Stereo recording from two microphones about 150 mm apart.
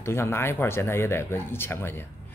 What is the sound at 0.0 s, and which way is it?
A woman's voice, 15° left (ahead or behind).